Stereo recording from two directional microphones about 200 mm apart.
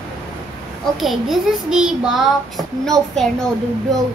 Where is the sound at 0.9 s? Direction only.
Centre (ahead or behind).